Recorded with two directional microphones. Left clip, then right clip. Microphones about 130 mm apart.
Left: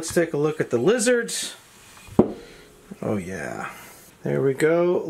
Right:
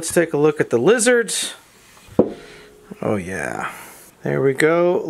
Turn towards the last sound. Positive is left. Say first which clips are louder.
# right 4 dB
turn(degrees=-45)  # may be behind; listen again after turning